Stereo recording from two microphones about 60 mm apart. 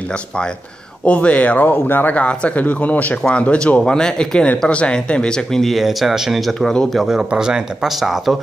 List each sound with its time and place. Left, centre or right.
1.0 s speech: left
2.1 s speech: left
3.2 s speech: centre